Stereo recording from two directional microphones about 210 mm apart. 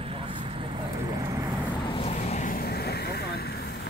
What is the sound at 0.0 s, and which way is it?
Vehicle, 25° right (ahead or behind).